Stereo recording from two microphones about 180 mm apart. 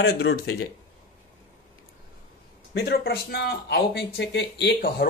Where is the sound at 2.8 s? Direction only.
60° left (ahead or behind).